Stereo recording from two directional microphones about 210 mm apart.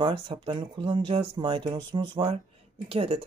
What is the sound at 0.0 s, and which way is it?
Speech, 25° right (ahead or behind).